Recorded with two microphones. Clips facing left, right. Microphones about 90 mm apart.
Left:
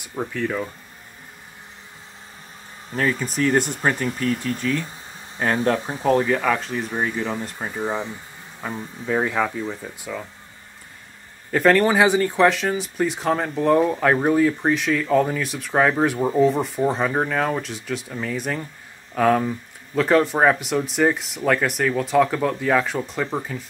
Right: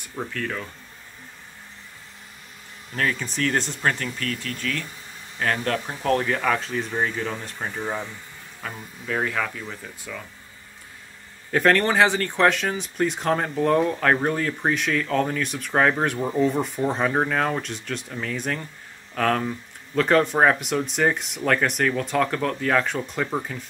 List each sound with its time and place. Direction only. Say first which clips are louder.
0.1 s speech: left 4 dB; 15° left (ahead or behind)
3.0 s speech: left 3 dB; 5° left (ahead or behind); by 6.0 s 25° left (ahead or behind)
6.0 s speech: left 3 dB; 10° left (ahead or behind); by 9.8 s 25° left (ahead or behind)
11.5 s speech: left 3 dB; centre (ahead or behind)
12.3 s speech: left 2 dB; centre (ahead or behind)